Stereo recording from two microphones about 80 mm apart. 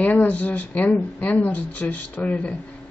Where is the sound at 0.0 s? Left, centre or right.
Centre.